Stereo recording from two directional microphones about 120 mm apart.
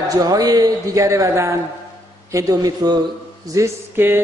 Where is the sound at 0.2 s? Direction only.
30° right (ahead or behind).